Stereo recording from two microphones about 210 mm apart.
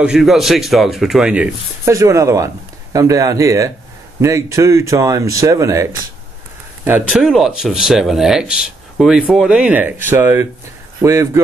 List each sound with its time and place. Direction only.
0.0 s speech: 5° right (ahead or behind)